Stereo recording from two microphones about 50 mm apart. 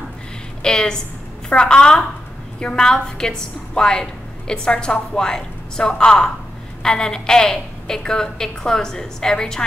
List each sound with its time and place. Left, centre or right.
0.6 s a woman's voice: centre